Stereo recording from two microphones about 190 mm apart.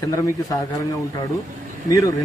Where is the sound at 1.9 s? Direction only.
20° left (ahead or behind).